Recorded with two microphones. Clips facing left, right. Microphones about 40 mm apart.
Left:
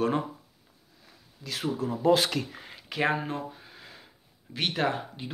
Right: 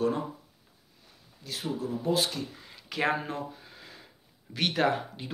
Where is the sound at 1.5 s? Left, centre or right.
Left.